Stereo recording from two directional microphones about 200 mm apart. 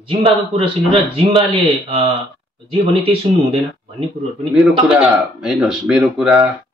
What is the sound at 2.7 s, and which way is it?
Speech, 30° right (ahead or behind).